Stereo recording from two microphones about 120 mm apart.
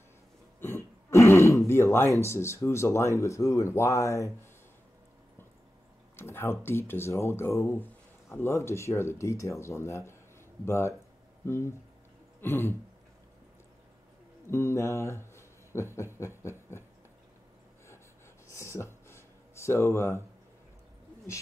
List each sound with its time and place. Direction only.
0.6 s throat clearing: 20° left (ahead or behind)
2.2 s speech: 20° left (ahead or behind)
6.1 s speech: 20° left (ahead or behind)
12.4 s throat clearing: 20° left (ahead or behind)
14.5 s speech: 20° left (ahead or behind)
18.5 s a sound: 25° left (ahead or behind)